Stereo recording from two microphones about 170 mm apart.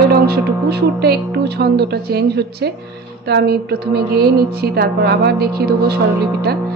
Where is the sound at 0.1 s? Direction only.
70° right (ahead or behind).